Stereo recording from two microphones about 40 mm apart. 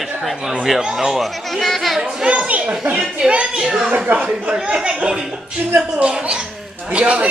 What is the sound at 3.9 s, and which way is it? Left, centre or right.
Speech, right.